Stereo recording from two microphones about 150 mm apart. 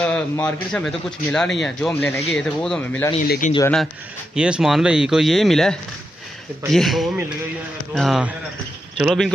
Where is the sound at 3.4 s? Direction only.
55° left (ahead or behind).